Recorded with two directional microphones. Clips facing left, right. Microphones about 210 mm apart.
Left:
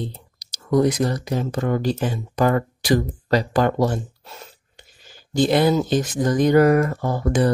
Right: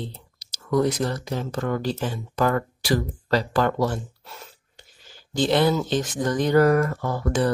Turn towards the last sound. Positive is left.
turn(degrees=15)  # may be behind; listen again after turning